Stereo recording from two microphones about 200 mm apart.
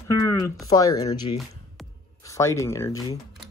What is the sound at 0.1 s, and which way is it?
Speech, 15° left (ahead or behind).